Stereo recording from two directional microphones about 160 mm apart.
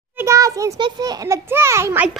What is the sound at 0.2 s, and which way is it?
A child's voice, 20° right (ahead or behind).